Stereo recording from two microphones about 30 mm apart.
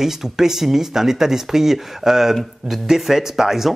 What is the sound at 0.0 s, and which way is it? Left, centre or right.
Speech, centre.